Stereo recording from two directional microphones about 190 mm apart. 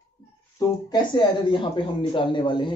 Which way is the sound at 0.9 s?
25° left (ahead or behind).